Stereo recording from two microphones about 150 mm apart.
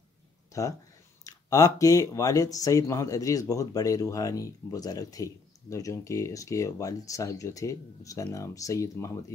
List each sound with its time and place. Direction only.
0.5 s speech: 20° left (ahead or behind)